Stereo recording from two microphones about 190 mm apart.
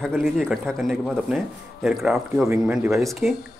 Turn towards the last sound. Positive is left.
turn(degrees=0)  # may be behind; listen again after turning